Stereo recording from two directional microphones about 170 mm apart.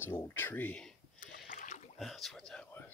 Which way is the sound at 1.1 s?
50° left (ahead or behind).